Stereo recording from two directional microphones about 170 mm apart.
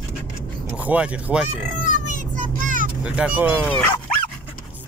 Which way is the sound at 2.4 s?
50° right (ahead or behind).